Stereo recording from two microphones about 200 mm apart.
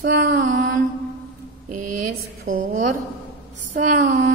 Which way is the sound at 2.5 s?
45° right (ahead or behind).